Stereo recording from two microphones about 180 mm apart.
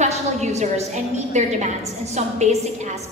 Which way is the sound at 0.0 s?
40° right (ahead or behind).